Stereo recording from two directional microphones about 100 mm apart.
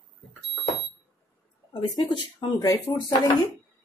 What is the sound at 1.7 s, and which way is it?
Speech, 45° left (ahead or behind).